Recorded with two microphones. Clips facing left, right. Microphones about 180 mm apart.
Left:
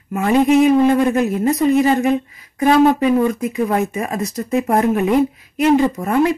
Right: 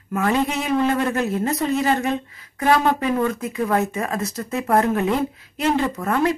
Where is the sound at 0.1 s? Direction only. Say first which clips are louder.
Left 7 dB; 15° left (ahead or behind).